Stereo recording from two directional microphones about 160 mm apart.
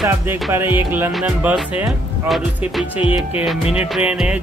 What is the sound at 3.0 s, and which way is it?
Music, 35° left (ahead or behind).